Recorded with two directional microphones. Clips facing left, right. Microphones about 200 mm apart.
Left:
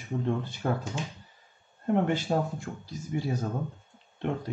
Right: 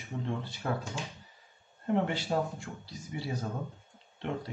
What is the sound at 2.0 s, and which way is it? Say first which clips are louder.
Speech: left 4 dB; 50° left (ahead or behind).